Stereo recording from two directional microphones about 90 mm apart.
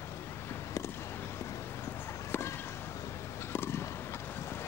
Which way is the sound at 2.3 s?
30° left (ahead or behind).